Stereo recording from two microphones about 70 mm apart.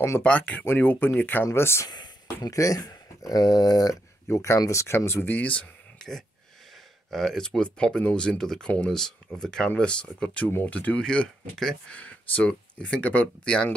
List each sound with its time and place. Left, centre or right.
0.2 s speech: centre; by 1.9 s left
1.9 s a sound: left
2.5 s speech: left
4.3 s speech: left
5.9 s a sound: centre
7.1 s speech: centre